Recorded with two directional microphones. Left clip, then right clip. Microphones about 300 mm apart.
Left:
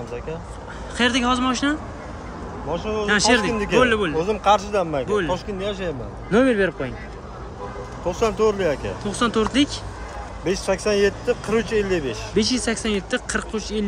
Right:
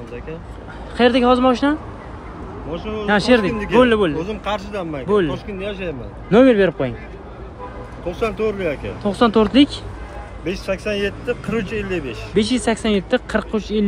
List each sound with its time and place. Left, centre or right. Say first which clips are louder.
0.9 s speech: right 6 dB; centre
2.7 s speech: left 2 dB; left
3.1 s speech: right 3 dB; centre
4.2 s speech: left 6 dB; left
5.0 s speech: right 5 dB; centre
5.3 s speech: left 1 dB; centre
6.3 s speech: right 6 dB; centre
8.1 s speech: left 1 dB; left
9.0 s speech: right 7 dB; centre
10.4 s speech: left 1 dB; left
12.4 s speech: right 4 dB; centre